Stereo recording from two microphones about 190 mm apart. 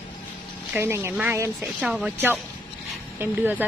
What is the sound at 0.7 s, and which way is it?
Speech, 15° right (ahead or behind).